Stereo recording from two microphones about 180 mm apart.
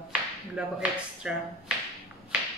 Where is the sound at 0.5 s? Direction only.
5° right (ahead or behind).